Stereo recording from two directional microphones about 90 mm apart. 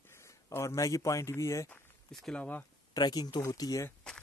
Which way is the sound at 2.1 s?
5° left (ahead or behind).